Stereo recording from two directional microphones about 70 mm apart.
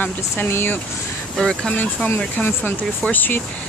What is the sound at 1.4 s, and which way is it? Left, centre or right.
Speech, centre.